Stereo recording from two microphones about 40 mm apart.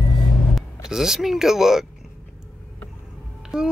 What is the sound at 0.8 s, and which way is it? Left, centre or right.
Speech, centre.